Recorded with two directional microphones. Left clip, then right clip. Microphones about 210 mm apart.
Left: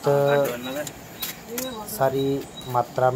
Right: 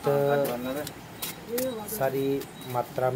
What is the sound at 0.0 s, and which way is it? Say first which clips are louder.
Pigeon: left 5 dB; 10° left (ahead or behind).